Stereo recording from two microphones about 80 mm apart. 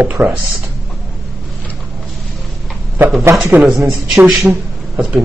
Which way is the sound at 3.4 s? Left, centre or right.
Centre.